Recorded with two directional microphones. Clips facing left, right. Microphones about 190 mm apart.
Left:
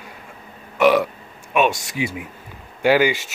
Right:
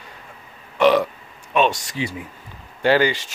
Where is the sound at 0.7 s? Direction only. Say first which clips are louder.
Even; 10° left (ahead or behind).